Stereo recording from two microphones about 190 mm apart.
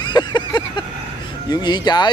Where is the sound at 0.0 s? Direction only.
20° left (ahead or behind).